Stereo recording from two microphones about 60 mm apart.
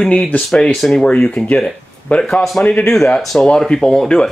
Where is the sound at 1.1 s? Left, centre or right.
Centre.